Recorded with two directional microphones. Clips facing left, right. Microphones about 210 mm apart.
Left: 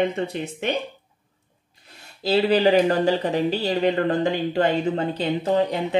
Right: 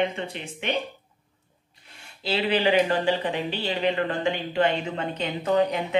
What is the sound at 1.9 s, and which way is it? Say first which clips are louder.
Speech: left 7 dB; 40° left (ahead or behind).